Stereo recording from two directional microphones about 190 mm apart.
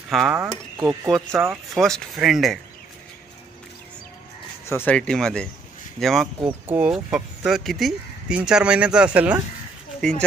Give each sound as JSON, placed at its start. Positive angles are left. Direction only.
{"t": 0.1, "sound": "speech", "side_deg": 0}
{"t": 0.7, "sound": "speech", "side_deg": -20}
{"t": 1.7, "sound": "speech", "side_deg": 0}
{"t": 4.6, "sound": "speech", "side_deg": 10}
{"t": 10.0, "sound": "speech", "side_deg": 5}